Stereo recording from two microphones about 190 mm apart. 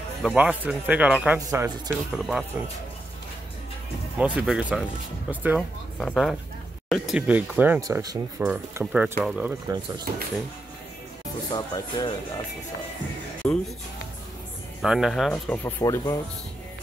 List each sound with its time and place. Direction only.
0.2 s speech: 5° right (ahead or behind)
1.4 s speech: 15° right (ahead or behind)
2.1 s speech: 5° right (ahead or behind)
4.2 s speech: 5° right (ahead or behind)
5.9 s speech: centre (ahead or behind); by 8.2 s 20° right (ahead or behind)
8.4 s speech: 5° right (ahead or behind)
9.7 s speech: 20° right (ahead or behind)
11.5 s speech: 20° left (ahead or behind)
13.4 s speech: 5° left (ahead or behind)
14.8 s speech: centre (ahead or behind); by 16.2 s 15° left (ahead or behind)